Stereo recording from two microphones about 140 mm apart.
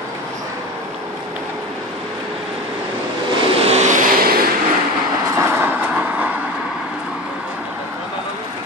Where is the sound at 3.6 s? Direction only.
50° right (ahead or behind); by 4.4 s 80° right.